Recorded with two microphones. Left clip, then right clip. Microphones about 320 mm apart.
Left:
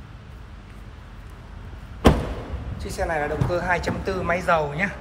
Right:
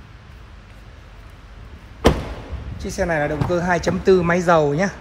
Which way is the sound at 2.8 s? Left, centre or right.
Right.